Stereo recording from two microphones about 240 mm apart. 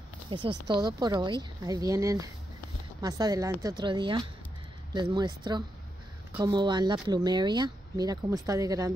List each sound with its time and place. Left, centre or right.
0.3 s speech: right